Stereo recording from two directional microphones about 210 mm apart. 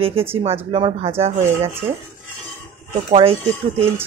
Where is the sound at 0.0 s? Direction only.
25° right (ahead or behind).